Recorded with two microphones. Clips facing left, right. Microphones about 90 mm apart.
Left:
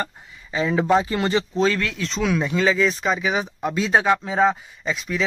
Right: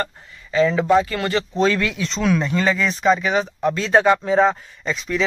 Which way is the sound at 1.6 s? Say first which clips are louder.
Right 5 dB; centre (ahead or behind).